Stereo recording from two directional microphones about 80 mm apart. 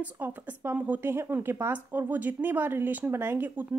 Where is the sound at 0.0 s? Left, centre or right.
Right.